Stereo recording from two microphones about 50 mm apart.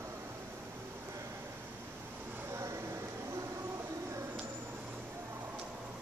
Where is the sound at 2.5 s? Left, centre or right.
Right.